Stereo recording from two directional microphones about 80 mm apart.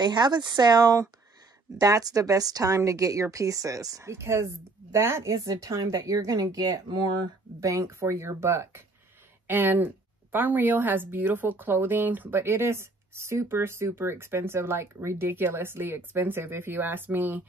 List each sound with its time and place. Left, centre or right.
0.0 s a woman's voice: right
4.1 s a woman's voice: right
7.6 s speech: right
9.5 s speech: right